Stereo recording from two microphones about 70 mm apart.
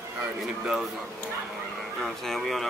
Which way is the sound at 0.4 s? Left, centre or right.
Centre.